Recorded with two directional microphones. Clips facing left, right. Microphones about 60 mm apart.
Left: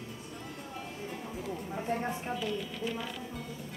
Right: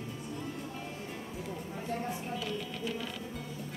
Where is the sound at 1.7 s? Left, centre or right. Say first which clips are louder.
Left 3 dB; left.